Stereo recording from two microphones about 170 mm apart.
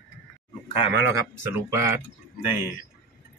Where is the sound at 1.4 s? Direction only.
15° right (ahead or behind).